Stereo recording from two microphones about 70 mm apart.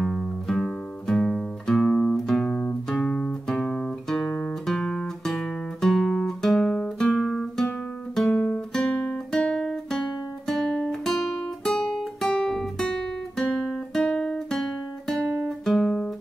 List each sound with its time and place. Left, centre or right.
0.0 s music: centre
4.3 s guitar: centre
9.3 s music: centre
10.9 s guitar: centre